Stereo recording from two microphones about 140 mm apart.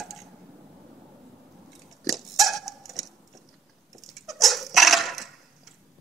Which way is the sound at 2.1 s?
Centre (ahead or behind).